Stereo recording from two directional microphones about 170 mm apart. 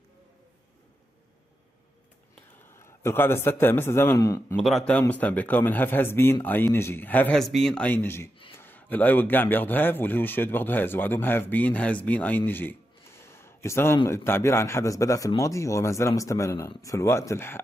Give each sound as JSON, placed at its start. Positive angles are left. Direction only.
{"t": 2.6, "sound": "a man's voice", "side_deg": 15}
{"t": 4.6, "sound": "speech", "side_deg": 0}